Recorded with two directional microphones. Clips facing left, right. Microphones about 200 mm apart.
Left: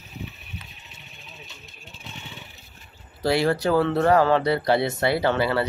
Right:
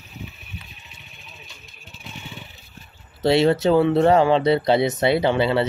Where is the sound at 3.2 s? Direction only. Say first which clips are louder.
Right 4 dB; 25° right (ahead or behind).